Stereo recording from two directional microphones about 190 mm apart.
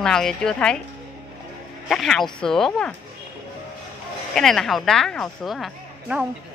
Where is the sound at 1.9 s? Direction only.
Centre (ahead or behind).